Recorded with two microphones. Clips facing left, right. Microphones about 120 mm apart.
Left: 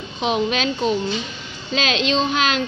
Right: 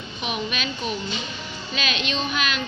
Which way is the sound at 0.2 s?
90° left.